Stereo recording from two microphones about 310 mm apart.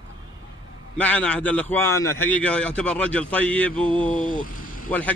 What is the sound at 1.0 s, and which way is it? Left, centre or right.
Speech, centre.